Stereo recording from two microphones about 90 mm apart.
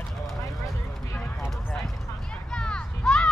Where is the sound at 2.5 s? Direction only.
10° left (ahead or behind).